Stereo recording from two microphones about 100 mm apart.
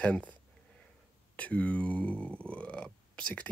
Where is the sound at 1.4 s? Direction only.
15° left (ahead or behind).